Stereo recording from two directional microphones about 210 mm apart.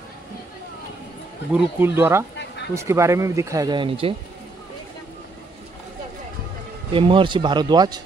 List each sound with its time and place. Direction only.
1.5 s speech: 10° right (ahead or behind)
2.3 s a sound: 55° left (ahead or behind)
2.7 s speech: 15° right (ahead or behind)
6.9 s speech: 25° right (ahead or behind)